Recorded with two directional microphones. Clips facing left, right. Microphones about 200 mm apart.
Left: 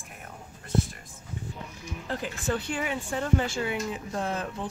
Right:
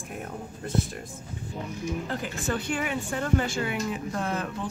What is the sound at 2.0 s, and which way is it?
Speech, 30° left (ahead or behind).